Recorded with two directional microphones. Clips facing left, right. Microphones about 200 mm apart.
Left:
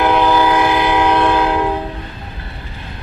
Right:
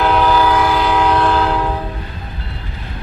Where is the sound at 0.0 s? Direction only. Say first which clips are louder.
Left 1 dB; 15° left (ahead or behind).